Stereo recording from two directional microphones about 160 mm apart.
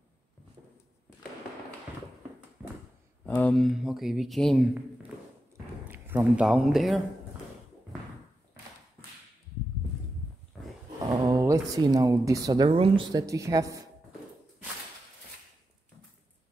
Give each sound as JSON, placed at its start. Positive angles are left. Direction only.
{"t": 3.3, "sound": "speech", "side_deg": 5}
{"t": 5.9, "sound": "speech", "side_deg": -10}
{"t": 11.2, "sound": "speech", "side_deg": -20}
{"t": 13.1, "sound": "a woman's voice", "side_deg": -20}